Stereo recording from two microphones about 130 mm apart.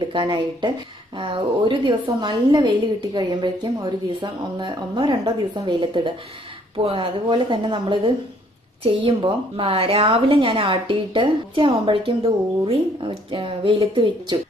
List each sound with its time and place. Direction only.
0.0 s a woman's voice: 35° right (ahead or behind)